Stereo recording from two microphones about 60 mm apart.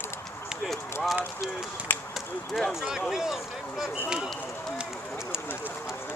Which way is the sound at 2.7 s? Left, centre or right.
Centre.